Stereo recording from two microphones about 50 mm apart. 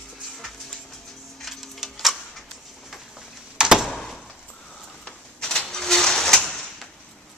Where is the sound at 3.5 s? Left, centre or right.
Centre.